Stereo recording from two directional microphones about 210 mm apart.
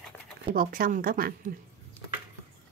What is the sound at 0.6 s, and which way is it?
Speech, 40° right (ahead or behind).